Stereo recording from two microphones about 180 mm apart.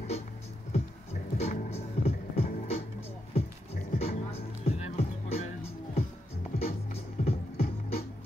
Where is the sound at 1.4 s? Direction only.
35° left (ahead or behind).